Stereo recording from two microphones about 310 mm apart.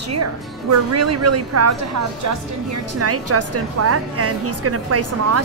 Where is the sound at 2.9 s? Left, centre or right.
Right.